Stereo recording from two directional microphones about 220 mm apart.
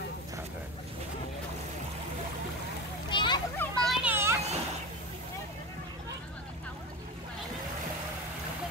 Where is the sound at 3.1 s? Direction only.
20° left (ahead or behind).